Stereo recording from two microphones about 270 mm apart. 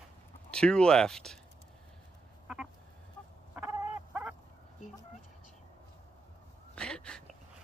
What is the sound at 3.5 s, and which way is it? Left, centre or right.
Fowl, centre.